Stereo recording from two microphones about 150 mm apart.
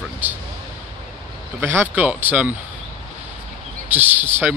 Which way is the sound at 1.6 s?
15° right (ahead or behind).